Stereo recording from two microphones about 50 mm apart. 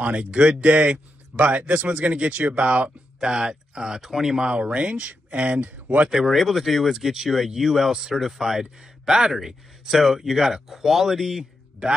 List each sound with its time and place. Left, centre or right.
0.0 s speech: right
6.0 s speech: centre